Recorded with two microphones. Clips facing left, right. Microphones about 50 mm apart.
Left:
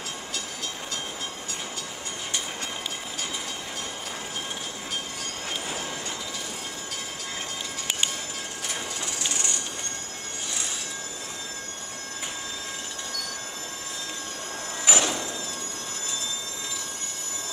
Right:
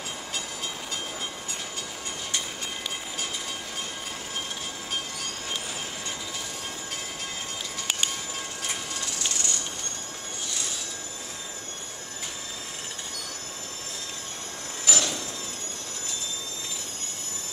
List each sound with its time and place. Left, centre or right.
14.9 s hammer: left